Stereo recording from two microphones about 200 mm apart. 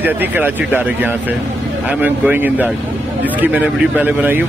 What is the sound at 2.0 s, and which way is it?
Speech, 10° right (ahead or behind).